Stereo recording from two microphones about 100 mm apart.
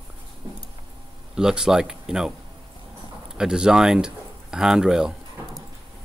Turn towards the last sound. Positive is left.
turn(degrees=-5)  # may be behind; listen again after turning